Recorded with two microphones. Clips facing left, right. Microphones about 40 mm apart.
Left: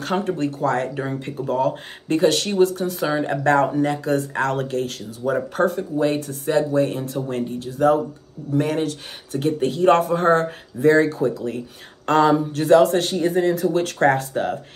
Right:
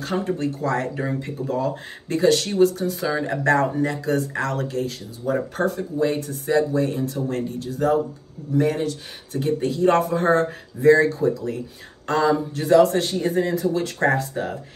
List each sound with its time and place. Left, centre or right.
0.0 s speech: left
13.6 s speech: left